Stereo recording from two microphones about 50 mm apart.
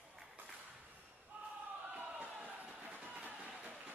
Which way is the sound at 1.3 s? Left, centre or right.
Right.